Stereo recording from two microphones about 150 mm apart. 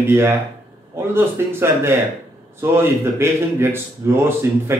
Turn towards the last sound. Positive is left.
turn(degrees=-15)  # may be behind; listen again after turning